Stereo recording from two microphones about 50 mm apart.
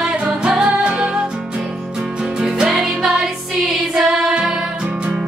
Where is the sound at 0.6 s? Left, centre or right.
Centre.